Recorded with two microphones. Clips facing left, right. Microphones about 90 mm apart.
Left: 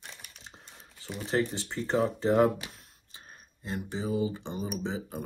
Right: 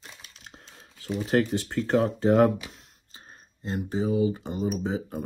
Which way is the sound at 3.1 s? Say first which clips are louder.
Right 1 dB; 40° right (ahead or behind).